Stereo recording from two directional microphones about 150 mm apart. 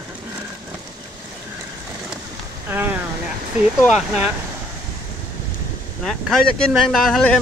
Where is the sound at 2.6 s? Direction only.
15° right (ahead or behind).